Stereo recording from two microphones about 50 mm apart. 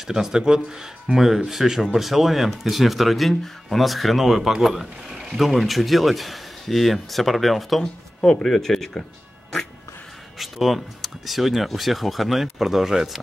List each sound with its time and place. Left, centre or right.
0.0 s speech: centre
7.8 s speech: centre
10.4 s speech: centre